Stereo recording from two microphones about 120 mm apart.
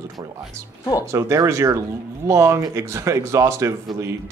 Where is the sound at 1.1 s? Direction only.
25° right (ahead or behind).